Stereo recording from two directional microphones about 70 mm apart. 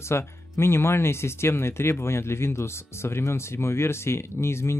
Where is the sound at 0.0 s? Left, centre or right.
Left.